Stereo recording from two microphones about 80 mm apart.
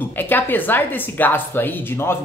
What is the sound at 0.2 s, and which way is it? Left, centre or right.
A woman's voice, left.